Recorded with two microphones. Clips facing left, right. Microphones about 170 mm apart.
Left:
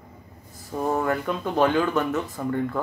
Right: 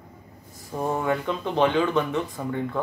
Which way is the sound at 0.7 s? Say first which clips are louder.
Left 1 dB; centre (ahead or behind).